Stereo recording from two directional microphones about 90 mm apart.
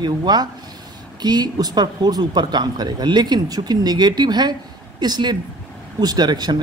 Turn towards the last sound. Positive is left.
turn(degrees=-50)  # may be behind; listen again after turning